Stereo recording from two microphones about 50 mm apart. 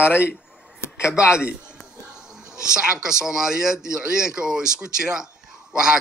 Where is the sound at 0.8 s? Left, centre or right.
Left.